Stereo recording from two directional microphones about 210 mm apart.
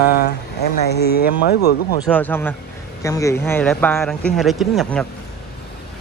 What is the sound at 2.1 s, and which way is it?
Speech, 10° left (ahead or behind).